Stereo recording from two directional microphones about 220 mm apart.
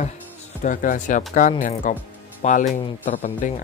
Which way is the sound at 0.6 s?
35° left (ahead or behind).